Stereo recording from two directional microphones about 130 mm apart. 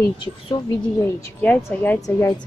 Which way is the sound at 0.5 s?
30° left (ahead or behind).